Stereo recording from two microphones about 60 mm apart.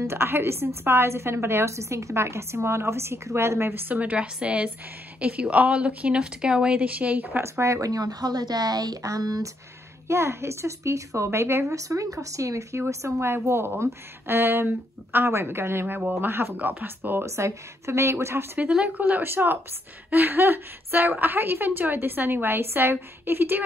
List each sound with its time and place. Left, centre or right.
0.0 s a woman's voice: right
3.9 s speech: right
7.4 s a woman's voice: right
10.0 s a woman's voice: right
11.2 s a woman's voice: right
11.7 s speech: right
13.0 s a woman's voice: right
16.0 s speech: right
16.3 s a woman's voice: right
17.3 s a woman's voice: right
18.9 s a woman's voice: right